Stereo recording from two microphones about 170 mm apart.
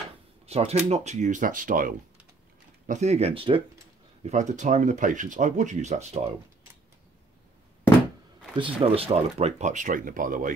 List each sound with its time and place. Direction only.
0.5 s speech: 35° right (ahead or behind); by 2.0 s 55° right (ahead or behind)
2.9 s speech: 40° right (ahead or behind)
4.3 s speech: 45° right (ahead or behind)
8.5 s speech: 30° right (ahead or behind); by 10.5 s 50° right (ahead or behind)